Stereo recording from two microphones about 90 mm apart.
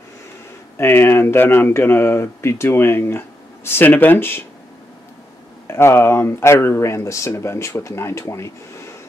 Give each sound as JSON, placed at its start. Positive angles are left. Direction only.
{"t": 0.7, "sound": "speech", "side_deg": 25}
{"t": 5.7, "sound": "speech", "side_deg": 30}